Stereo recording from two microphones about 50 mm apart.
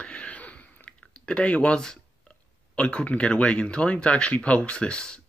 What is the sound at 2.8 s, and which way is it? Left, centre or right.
Speech, left.